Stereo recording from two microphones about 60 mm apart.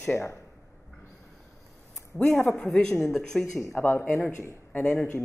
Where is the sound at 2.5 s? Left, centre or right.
Centre.